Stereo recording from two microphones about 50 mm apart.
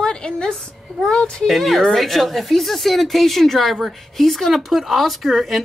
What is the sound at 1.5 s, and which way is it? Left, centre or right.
A woman's voice, centre.